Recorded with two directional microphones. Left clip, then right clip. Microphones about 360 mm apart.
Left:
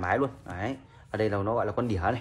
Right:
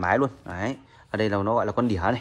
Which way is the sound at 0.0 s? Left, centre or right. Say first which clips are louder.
Right 4 dB; right.